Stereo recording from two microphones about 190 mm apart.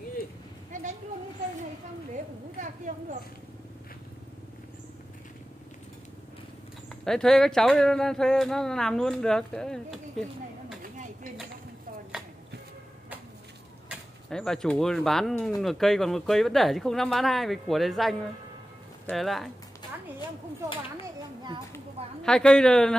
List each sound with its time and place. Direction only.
0.7 s a sound: 40° right (ahead or behind)
2.6 s speech: 40° right (ahead or behind)
7.1 s speech: centre (ahead or behind)
13.8 s speech: 5° left (ahead or behind)
21.7 s speech: 5° left (ahead or behind)